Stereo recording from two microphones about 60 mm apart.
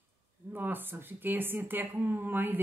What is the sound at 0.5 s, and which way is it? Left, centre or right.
A woman's voice, right.